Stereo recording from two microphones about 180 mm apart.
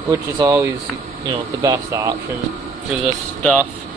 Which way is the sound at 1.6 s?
20° right (ahead or behind).